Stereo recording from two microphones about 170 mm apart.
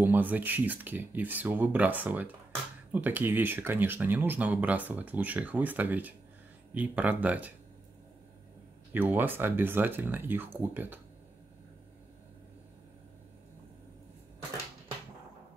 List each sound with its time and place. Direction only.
0.0 s speech: 10° right (ahead or behind)
8.9 s speech: 10° right (ahead or behind)